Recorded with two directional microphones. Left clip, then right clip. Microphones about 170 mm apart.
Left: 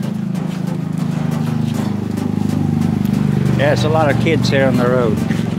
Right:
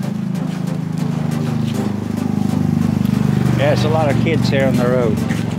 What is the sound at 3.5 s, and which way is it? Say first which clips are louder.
Speech: left 2 dB; 15° left (ahead or behind).